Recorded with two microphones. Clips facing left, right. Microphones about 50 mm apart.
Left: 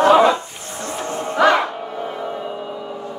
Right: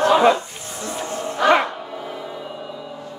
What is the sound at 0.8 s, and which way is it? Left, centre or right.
Music, left.